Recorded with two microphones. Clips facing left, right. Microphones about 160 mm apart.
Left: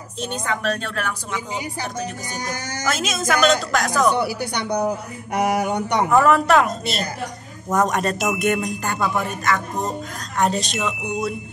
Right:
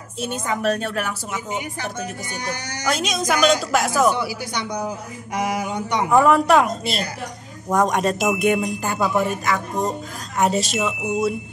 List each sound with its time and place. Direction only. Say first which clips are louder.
0.5 s a woman's voice: right 3 dB; 10° right (ahead or behind)
1.8 s speech: left 1 dB; 40° left (ahead or behind)
2.9 s speech: right 1 dB; centre (ahead or behind)
4.2 s speech: left 3 dB; 60° left (ahead or behind)
6.0 s speech: right 1 dB; centre (ahead or behind)